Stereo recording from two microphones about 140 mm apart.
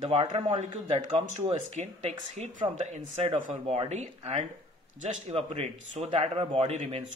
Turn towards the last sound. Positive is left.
turn(degrees=-50)  # may be behind; listen again after turning